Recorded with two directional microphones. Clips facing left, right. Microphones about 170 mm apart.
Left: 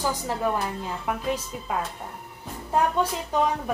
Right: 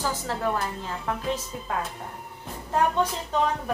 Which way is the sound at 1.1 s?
10° left (ahead or behind).